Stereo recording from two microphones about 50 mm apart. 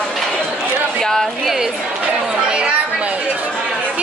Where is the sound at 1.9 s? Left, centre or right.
Right.